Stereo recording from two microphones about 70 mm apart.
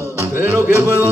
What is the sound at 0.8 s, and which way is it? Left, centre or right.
Music, right.